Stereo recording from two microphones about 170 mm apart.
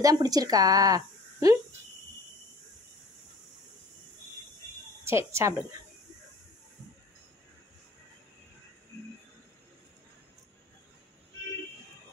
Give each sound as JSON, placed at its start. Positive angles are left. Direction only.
{"t": 0.0, "sound": "speech", "side_deg": -20}
{"t": 5.0, "sound": "speech", "side_deg": -15}